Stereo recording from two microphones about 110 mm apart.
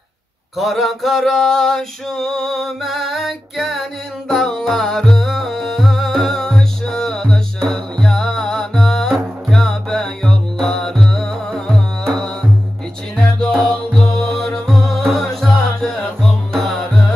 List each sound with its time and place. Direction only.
0.6 s male singing: centre (ahead or behind)
4.3 s music: 5° left (ahead or behind)